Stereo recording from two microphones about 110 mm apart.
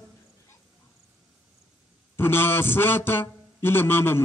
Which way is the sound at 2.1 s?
20° left (ahead or behind).